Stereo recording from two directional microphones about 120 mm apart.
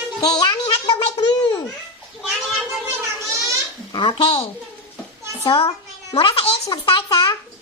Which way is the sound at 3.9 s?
45° left (ahead or behind).